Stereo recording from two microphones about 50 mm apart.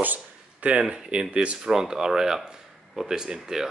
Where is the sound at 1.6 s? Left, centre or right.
Centre.